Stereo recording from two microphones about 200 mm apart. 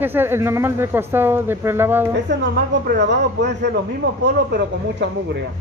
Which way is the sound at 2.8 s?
60° right (ahead or behind).